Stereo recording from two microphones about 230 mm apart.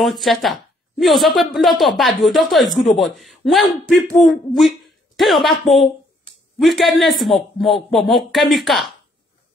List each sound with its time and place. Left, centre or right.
0.0 s a woman's voice: centre